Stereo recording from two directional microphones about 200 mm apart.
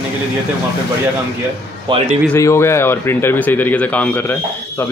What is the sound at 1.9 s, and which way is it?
Speech, 25° right (ahead or behind).